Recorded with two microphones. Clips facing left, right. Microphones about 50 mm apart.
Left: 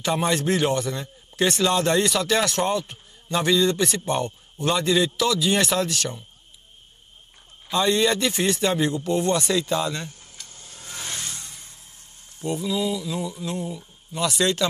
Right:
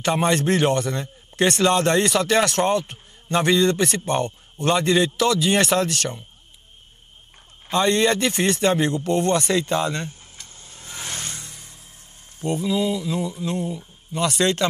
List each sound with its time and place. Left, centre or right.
0.1 s a man's voice: right
4.6 s a man's voice: right
5.0 s a man's voice: right
5.4 s a man's voice: right
7.6 s a man's voice: right
9.2 s vehicle: right
12.5 s mantra: centre
13.7 s speech: centre
14.2 s a man's voice: right